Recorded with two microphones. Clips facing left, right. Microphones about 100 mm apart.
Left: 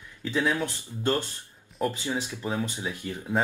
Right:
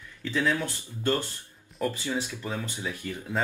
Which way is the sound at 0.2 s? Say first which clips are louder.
Left 1 dB; 15° left (ahead or behind).